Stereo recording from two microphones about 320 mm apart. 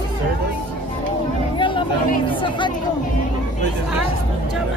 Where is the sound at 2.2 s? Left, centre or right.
Centre.